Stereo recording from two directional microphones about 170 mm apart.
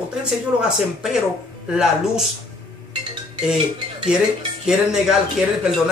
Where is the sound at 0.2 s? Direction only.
5° right (ahead or behind).